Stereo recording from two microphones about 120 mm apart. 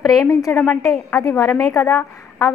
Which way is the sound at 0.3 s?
25° left (ahead or behind).